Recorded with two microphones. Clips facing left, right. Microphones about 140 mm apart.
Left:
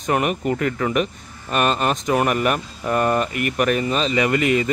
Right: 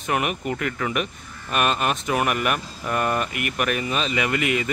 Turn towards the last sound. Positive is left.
turn(degrees=35)  # may be behind; listen again after turning